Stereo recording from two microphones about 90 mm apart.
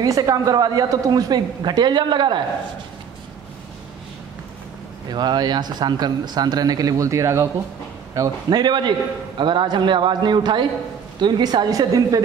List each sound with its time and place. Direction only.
0.0 s speech: 40° right (ahead or behind); by 2.4 s 60° right (ahead or behind)
5.1 s speech: 50° right (ahead or behind); by 7.4 s 35° right (ahead or behind)
8.5 s a man's voice: 55° right (ahead or behind)